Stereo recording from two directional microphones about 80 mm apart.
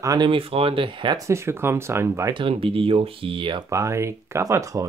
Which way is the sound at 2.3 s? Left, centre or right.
Right.